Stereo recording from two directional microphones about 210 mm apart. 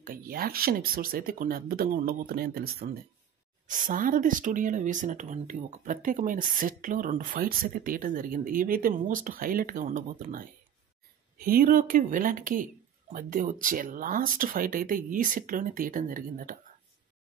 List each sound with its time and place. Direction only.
0.0 s speech: 45° right (ahead or behind)